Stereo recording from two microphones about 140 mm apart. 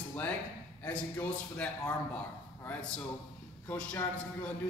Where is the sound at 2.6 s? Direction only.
5° left (ahead or behind).